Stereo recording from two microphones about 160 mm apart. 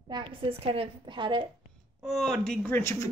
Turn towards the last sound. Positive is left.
turn(degrees=15)  # may be behind; listen again after turning